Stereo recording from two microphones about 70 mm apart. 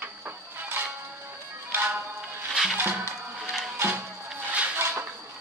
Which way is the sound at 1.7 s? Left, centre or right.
Right.